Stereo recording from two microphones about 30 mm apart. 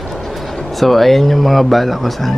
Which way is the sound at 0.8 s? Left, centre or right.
Centre.